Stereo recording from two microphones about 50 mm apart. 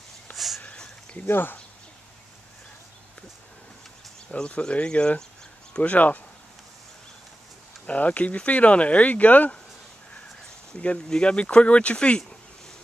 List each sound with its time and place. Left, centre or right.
0.3 s a sound: left
1.2 s speech: left
4.4 s speech: left
7.8 s speech: left
10.7 s speech: left